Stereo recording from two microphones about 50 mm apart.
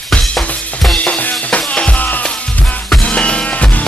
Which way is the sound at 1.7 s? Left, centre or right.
Left.